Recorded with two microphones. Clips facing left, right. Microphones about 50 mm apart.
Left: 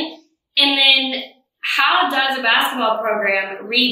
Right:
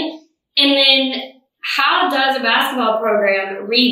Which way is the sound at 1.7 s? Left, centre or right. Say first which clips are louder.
Right 1 dB; left.